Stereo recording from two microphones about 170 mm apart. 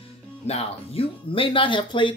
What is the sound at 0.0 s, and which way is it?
Speech, 35° left (ahead or behind).